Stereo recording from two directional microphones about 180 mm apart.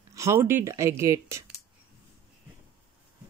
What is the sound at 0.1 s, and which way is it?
Speech, 15° right (ahead or behind).